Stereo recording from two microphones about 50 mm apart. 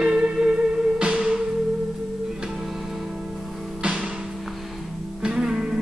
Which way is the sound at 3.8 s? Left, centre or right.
Right.